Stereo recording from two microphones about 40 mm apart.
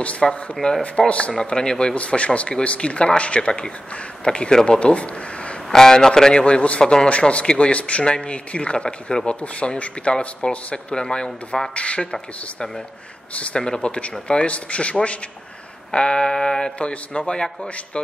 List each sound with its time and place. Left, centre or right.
0.2 s a man's voice: centre
0.6 s speech: left
1.3 s speech: centre
2.0 s speech: left
4.5 s a man's voice: centre
4.7 s a sound: left
5.7 s a man's voice: centre
6.4 s speech: left
6.8 s speech: centre
7.1 s speech: left
11.0 s a man's voice: left
11.7 s speech: left
12.1 s a man's voice: centre
16.7 s speech: left